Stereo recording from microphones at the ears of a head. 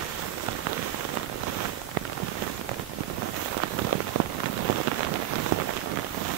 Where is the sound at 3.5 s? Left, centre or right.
Right.